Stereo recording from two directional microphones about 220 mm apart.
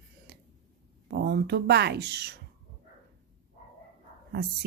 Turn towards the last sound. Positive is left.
turn(degrees=-45)  # may be behind; listen again after turning